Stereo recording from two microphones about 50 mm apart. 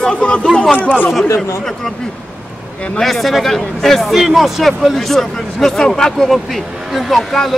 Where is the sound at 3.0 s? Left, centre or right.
Centre.